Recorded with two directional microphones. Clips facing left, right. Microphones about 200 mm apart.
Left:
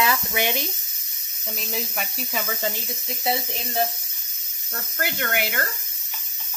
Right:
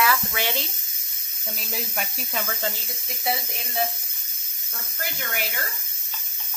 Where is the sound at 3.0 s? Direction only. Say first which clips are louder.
Left 2 dB; 25° left (ahead or behind).